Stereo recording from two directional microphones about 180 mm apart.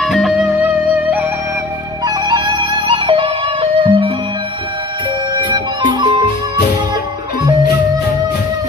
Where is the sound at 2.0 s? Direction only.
20° right (ahead or behind).